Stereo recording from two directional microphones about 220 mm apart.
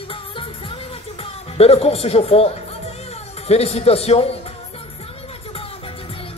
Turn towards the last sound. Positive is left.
turn(degrees=25)  # may be behind; listen again after turning